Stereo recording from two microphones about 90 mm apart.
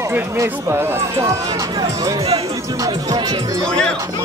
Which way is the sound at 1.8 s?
40° right (ahead or behind).